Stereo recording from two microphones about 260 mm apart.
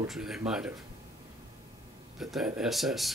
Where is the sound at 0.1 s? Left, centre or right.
Centre.